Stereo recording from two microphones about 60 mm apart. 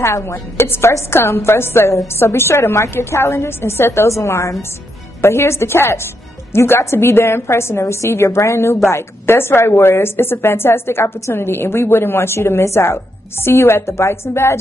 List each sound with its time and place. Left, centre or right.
0.0 s a woman's voice: left